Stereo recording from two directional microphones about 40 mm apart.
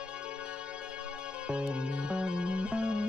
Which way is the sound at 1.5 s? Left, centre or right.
Right.